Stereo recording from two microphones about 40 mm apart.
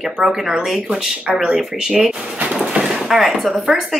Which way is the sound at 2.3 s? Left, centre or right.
Right.